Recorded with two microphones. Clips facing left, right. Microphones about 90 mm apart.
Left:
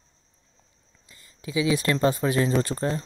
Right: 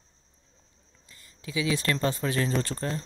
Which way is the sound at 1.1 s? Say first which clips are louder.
Left 5 dB; 25° left (ahead or behind).